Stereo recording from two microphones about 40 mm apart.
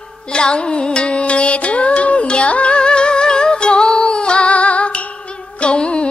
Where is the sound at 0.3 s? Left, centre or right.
Left.